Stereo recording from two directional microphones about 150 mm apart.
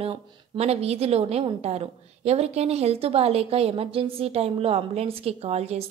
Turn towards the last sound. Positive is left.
turn(degrees=-45)  # may be behind; listen again after turning